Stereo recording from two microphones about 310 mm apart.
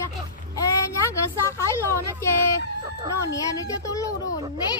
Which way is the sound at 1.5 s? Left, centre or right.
Centre.